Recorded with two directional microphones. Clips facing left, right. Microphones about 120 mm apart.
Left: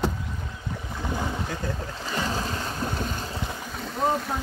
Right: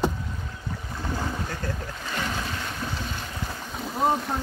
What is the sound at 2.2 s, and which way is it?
Boat, 35° left (ahead or behind).